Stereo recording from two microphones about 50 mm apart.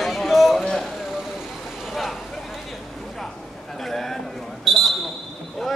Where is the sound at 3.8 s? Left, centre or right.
Centre.